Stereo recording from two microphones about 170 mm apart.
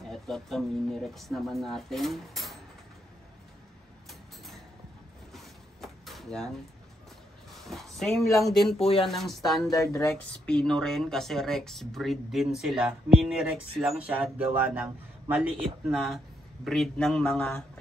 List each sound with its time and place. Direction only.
0.1 s speech: centre (ahead or behind)
5.3 s a sound: centre (ahead or behind)
7.5 s speech: centre (ahead or behind)
8.7 s speech: 35° left (ahead or behind)
9.0 s speech: centre (ahead or behind)
9.7 s speech: 20° left (ahead or behind)
10.5 s speech: 5° left (ahead or behind)